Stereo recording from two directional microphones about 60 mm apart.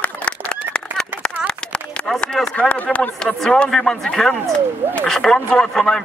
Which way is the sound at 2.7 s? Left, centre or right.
Left.